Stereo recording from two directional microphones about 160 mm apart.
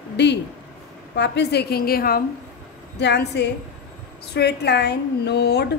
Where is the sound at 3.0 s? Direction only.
90° left.